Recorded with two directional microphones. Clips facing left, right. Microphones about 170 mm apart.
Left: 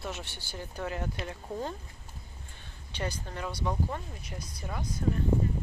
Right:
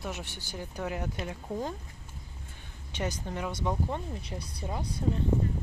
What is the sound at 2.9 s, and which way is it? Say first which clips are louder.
Speech: right 2 dB; 15° right (ahead or behind).